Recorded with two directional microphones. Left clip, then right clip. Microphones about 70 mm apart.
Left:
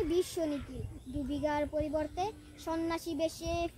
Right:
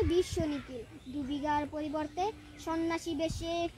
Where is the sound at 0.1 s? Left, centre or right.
Centre.